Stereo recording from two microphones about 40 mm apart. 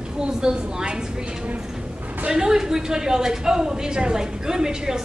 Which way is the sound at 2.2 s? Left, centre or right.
Centre.